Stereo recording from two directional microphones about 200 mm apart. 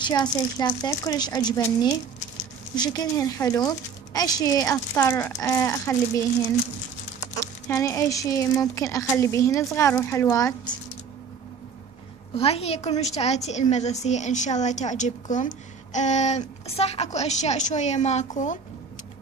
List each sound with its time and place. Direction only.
0.0 s a woman's voice: 20° left (ahead or behind)
7.3 s speech: 15° left (ahead or behind)
12.4 s a woman's voice: 30° left (ahead or behind)